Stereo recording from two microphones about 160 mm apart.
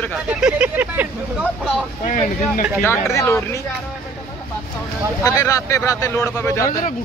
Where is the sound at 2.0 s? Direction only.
55° left (ahead or behind).